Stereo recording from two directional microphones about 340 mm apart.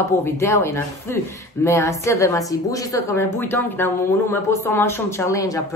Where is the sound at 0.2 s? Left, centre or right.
Centre.